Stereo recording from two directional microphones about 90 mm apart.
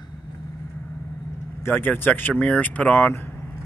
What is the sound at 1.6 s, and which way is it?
Speech, 20° left (ahead or behind).